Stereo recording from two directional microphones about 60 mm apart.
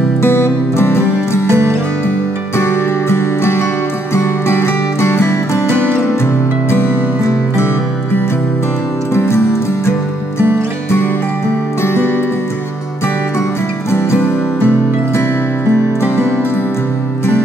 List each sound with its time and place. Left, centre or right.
0.2 s music: left
1.5 s music: right
2.5 s music: left
9.1 s music: left
11.8 s music: left
13.9 s music: left
16.0 s music: left